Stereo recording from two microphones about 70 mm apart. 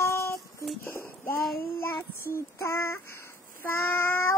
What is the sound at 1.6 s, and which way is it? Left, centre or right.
Child singing, left.